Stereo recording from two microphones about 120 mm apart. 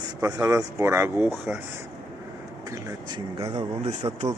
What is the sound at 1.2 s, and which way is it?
Speech, 10° right (ahead or behind).